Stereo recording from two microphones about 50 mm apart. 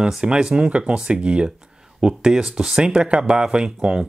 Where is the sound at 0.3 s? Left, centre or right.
Centre.